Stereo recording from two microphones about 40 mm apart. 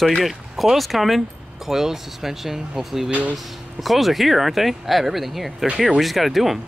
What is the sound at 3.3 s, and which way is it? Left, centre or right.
Speech, centre.